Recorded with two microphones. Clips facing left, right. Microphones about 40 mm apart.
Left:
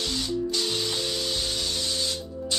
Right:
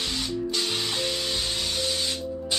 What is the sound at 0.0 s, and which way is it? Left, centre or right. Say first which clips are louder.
Spray: left 1 dB; centre.